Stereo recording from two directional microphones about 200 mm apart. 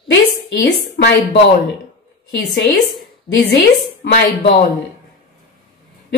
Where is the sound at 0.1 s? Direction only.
60° left (ahead or behind).